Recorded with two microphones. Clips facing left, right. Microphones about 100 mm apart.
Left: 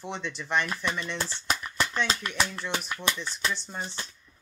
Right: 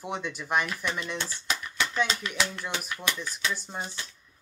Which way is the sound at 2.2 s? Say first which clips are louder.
Even; 50° left (ahead or behind).